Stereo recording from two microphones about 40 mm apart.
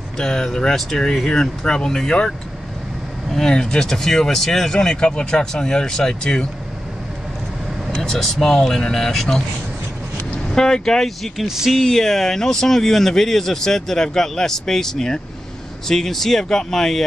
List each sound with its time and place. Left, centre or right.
0.2 s speech: centre
4.7 s speech: left
8.0 s speech: centre
10.5 s speech: centre
11.4 s speech: centre
11.7 s speech: centre